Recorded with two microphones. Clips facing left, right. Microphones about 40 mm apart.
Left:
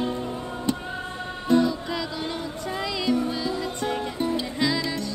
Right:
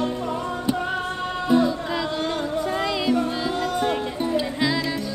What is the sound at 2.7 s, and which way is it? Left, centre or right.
Music, right.